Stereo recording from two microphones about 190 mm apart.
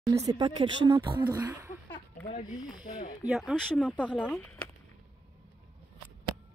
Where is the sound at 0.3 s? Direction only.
20° right (ahead or behind).